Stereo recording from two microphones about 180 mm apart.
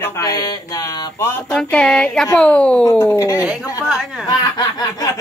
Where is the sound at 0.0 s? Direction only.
15° left (ahead or behind).